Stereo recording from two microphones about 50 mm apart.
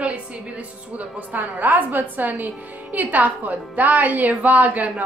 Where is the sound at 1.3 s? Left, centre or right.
Right.